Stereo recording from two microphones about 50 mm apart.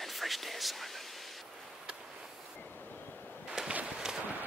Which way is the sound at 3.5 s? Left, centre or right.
Centre.